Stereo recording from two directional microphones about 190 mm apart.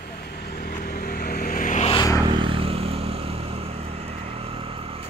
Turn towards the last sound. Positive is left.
turn(degrees=-30)  # may be behind; listen again after turning